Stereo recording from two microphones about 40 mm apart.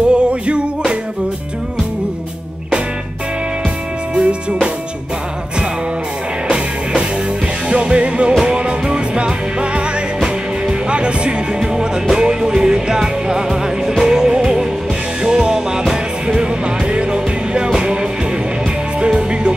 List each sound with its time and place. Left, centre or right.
0.1 s music: right
4.1 s music: right
6.5 s music: right
18.9 s music: right